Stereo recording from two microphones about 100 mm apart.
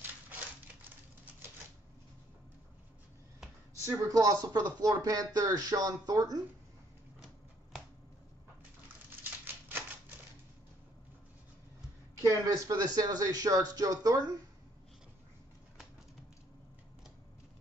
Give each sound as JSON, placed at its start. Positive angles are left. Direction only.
{"t": 3.8, "sound": "speech", "side_deg": -40}
{"t": 9.2, "sound": "typewriter", "side_deg": -20}
{"t": 12.2, "sound": "speech", "side_deg": -35}